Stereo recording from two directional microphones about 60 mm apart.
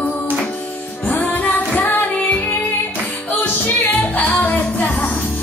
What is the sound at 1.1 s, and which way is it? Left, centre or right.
Music, left.